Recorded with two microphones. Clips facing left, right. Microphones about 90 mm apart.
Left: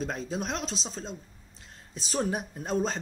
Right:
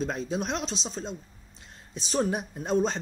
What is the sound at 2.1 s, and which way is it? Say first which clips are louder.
Speech: right 2 dB; centre (ahead or behind).